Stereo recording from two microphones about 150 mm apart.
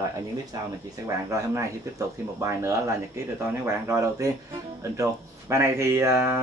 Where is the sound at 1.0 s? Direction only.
20° right (ahead or behind).